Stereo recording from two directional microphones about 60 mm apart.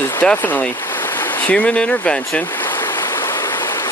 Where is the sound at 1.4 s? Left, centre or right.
Centre.